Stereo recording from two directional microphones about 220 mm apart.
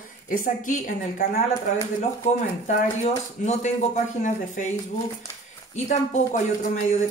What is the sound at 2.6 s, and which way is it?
A woman's voice, 35° left (ahead or behind).